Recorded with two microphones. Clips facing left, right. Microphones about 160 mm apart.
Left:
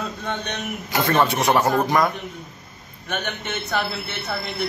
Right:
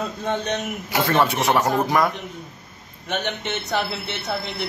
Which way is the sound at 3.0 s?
20° right (ahead or behind).